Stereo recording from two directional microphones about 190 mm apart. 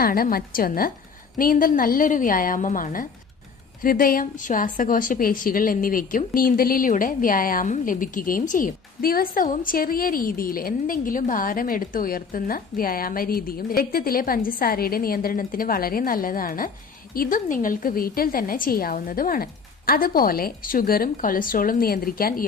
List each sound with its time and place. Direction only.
0.0 s a woman's voice: 50° left (ahead or behind)